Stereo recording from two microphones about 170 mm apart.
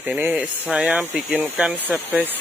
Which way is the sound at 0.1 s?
10° right (ahead or behind).